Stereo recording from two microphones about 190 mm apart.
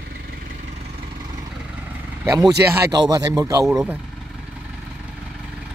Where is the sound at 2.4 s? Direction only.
10° right (ahead or behind).